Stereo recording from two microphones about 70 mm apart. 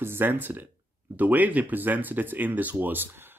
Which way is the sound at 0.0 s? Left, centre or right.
Right.